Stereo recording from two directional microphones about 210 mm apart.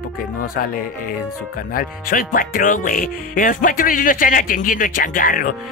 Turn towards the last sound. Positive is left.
turn(degrees=40)  # may be behind; listen again after turning